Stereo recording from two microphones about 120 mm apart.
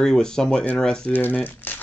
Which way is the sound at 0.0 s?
5° left (ahead or behind).